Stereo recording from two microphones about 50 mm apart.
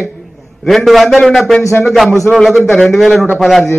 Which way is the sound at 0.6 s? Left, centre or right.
Centre.